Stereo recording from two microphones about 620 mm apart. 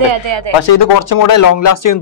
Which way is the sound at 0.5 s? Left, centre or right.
Left.